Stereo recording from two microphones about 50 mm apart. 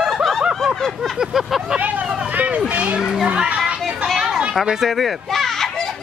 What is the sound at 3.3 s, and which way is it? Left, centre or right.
Speech, right.